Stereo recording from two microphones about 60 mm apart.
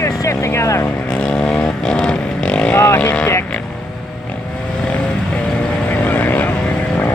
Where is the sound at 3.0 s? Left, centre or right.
Left.